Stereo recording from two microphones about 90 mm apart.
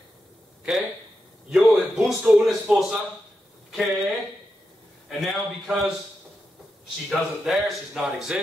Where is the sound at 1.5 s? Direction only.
15° right (ahead or behind).